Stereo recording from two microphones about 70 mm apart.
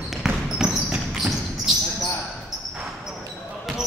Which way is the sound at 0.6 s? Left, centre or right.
Centre.